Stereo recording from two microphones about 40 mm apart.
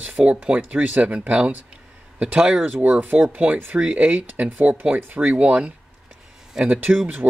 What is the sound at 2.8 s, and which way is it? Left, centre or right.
Speech, right.